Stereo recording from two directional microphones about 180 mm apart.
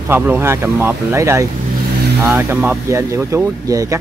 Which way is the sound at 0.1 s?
10° right (ahead or behind).